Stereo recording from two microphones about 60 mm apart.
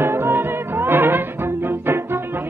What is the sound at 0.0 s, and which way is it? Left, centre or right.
Music, right.